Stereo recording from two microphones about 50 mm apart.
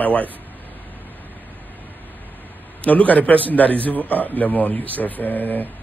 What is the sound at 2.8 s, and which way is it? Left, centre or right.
A man's voice, left.